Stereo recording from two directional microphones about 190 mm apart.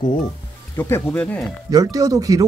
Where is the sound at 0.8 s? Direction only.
10° left (ahead or behind).